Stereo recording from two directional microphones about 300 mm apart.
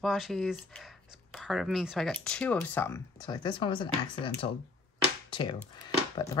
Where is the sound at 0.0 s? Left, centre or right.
Centre.